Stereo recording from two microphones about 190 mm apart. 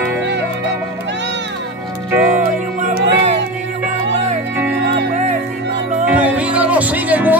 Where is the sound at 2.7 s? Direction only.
40° right (ahead or behind).